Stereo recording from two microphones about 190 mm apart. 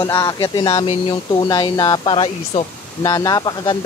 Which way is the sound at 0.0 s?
20° left (ahead or behind).